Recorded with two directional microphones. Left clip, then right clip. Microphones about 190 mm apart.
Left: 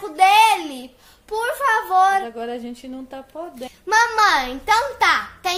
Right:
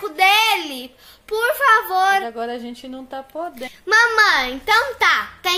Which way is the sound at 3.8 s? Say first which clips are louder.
Right 2 dB; 5° left (ahead or behind).